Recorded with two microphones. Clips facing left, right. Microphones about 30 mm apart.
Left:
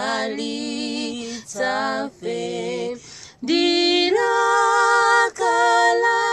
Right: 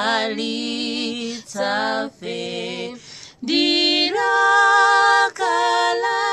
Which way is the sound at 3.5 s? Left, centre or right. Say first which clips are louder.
Even; right.